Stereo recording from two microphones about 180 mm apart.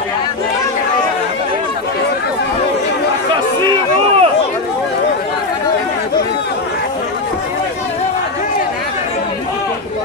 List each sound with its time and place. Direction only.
3.6 s run: 35° right (ahead or behind)